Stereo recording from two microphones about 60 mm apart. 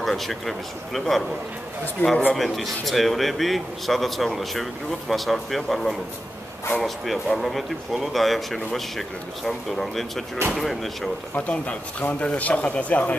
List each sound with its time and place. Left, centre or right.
0.0 s speech: centre
2.0 s a man's voice: left
2.3 s speech: centre
11.3 s speech: left